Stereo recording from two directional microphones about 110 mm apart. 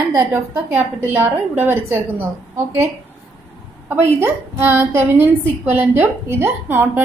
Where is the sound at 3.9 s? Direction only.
25° right (ahead or behind).